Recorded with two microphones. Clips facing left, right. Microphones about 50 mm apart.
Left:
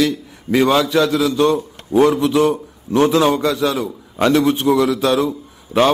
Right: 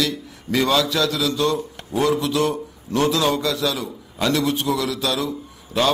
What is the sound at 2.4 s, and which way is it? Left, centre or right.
A man's voice, centre.